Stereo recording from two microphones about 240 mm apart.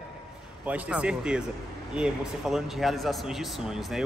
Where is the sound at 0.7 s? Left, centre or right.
Centre.